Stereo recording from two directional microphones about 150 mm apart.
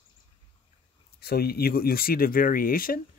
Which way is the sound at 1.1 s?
90° left.